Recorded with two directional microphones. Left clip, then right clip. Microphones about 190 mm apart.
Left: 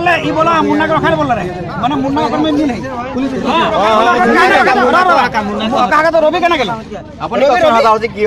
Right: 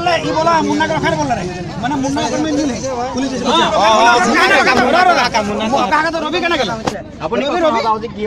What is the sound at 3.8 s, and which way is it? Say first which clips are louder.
Speech: right 1 dB; 45° left (ahead or behind).